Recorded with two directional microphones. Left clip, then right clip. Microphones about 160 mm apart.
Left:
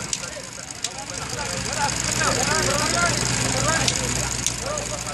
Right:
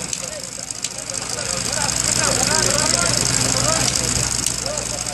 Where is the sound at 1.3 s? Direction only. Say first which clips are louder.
Right 3 dB; 50° right (ahead or behind).